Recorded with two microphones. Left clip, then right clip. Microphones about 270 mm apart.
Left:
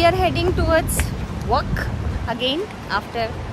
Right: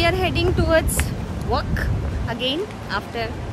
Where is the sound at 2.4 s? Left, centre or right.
Centre.